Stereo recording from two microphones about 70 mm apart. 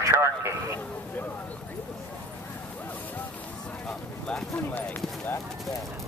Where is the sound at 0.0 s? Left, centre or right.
Right.